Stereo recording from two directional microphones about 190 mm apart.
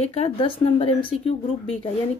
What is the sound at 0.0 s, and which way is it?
A woman's voice, 35° left (ahead or behind).